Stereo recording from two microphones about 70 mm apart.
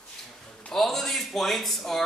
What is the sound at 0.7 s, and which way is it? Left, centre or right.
Speech, centre.